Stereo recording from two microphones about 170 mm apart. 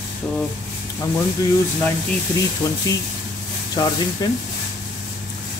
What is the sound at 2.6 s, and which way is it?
Speech, 20° left (ahead or behind).